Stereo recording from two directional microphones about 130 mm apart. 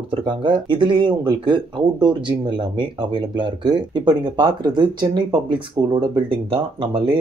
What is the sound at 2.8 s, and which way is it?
Speech, 35° right (ahead or behind).